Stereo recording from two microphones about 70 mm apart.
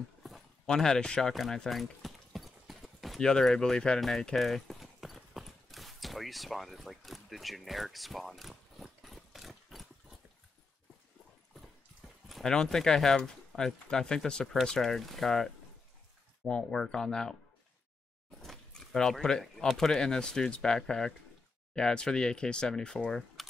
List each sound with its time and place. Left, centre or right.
0.7 s speech: centre
1.3 s clip-clop: centre
3.2 s a sound: centre
12.3 s speech: centre
18.4 s speech: centre